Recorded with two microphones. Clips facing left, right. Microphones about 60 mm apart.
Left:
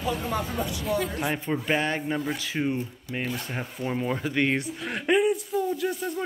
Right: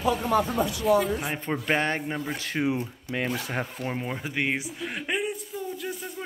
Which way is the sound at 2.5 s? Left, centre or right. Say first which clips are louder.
Right 4 dB; right.